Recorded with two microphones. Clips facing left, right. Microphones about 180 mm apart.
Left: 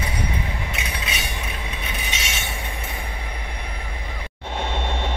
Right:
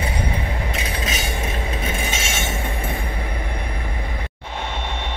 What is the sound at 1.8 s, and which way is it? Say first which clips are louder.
Train: right 6 dB; 50° right (ahead or behind).